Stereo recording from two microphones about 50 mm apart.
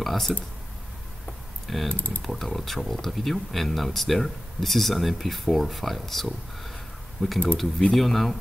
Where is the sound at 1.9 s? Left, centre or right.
Left.